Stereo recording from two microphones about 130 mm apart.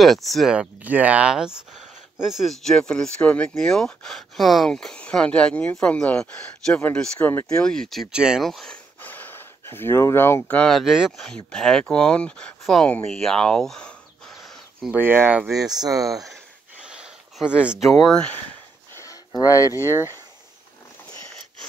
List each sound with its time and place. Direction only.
0.0 s speech: centre (ahead or behind)
9.0 s a sound: 15° left (ahead or behind)
10.6 s speech: centre (ahead or behind)
14.9 s speech: 15° right (ahead or behind)
15.5 s speech: 30° right (ahead or behind)
16.8 s speech: 5° right (ahead or behind)
18.9 s a sound: 25° left (ahead or behind)
19.9 s speech: 20° right (ahead or behind)